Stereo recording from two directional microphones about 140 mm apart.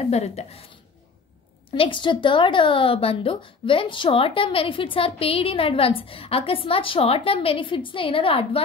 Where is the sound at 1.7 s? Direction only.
40° left (ahead or behind).